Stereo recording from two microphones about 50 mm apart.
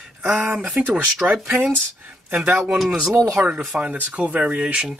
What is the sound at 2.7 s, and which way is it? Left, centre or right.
Speech, centre.